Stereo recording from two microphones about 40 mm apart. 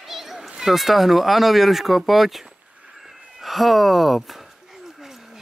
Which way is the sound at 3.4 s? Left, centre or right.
Centre.